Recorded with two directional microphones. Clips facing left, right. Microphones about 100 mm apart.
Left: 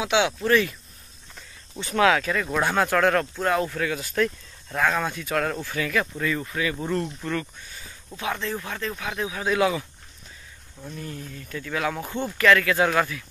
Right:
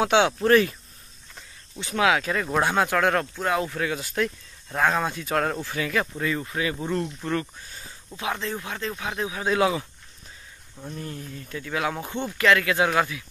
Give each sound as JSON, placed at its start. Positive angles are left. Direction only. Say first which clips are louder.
{"t": 0.0, "sound": "speech", "louder": "right 3 dB", "side_deg": -40}
{"t": 1.8, "sound": "speech", "louder": "left 2 dB", "side_deg": -15}
{"t": 3.8, "sound": "speech", "louder": "left 2 dB", "side_deg": -25}
{"t": 8.2, "sound": "speech", "louder": "left 1 dB", "side_deg": -25}
{"t": 9.5, "sound": "speech", "louder": "even", "side_deg": -25}